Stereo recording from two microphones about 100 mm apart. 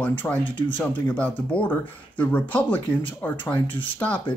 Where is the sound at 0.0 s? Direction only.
15° left (ahead or behind).